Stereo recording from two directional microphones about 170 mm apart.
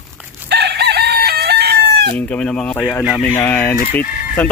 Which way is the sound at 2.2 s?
5° left (ahead or behind).